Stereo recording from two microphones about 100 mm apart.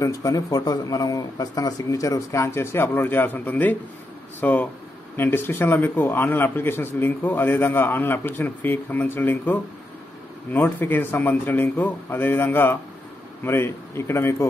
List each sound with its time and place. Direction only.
0.0 s a man's voice: 35° left (ahead or behind)